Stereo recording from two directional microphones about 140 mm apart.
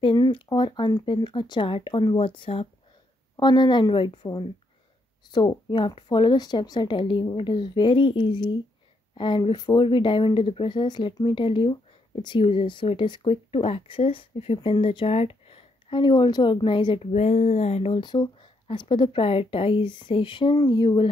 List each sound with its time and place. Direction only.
0.0 s speech: 35° left (ahead or behind)